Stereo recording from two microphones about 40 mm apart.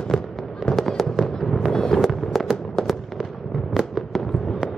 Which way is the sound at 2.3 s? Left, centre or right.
Centre.